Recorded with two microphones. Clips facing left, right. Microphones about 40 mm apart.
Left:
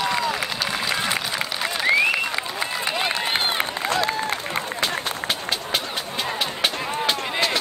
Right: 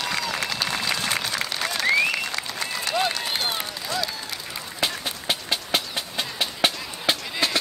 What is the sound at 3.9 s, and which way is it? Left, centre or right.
Applause, left.